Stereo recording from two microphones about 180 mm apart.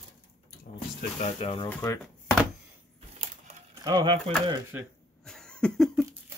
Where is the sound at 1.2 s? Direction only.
35° left (ahead or behind).